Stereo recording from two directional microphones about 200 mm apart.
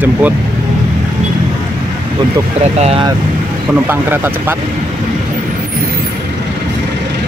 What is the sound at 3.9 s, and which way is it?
Speech, 10° right (ahead or behind).